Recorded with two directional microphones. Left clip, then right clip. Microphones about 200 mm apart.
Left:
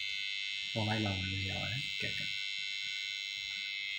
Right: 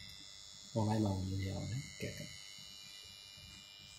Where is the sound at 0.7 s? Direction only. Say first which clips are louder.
Right 1 dB; 5° left (ahead or behind).